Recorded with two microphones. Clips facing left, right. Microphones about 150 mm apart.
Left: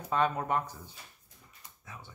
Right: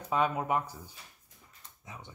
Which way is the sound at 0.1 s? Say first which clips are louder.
Even; 10° right (ahead or behind).